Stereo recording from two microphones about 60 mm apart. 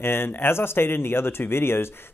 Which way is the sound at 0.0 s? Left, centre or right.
Left.